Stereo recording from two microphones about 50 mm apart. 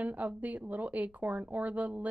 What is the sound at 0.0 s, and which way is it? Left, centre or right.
Speech, right.